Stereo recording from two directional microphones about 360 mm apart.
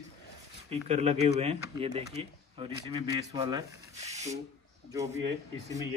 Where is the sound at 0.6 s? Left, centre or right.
Centre.